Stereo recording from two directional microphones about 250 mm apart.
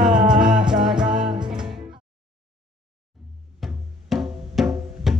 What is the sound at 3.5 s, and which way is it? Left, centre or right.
Music, centre.